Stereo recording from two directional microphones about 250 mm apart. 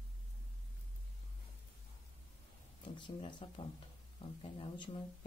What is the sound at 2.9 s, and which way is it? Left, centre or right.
Speech, centre.